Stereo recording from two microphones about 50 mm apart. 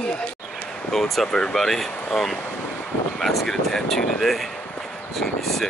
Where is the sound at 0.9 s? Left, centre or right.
Centre.